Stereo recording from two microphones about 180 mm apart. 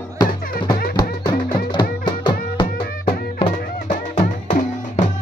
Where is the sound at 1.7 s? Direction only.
25° left (ahead or behind).